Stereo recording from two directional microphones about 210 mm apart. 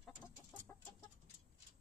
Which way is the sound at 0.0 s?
10° left (ahead or behind).